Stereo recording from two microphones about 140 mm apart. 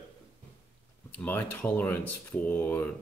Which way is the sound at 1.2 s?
15° left (ahead or behind).